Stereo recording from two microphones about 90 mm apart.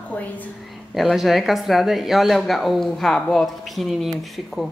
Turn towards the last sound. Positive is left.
turn(degrees=0)  # may be behind; listen again after turning